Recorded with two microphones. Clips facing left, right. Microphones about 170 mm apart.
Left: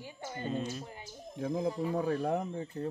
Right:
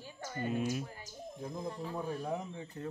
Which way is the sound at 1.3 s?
90° left.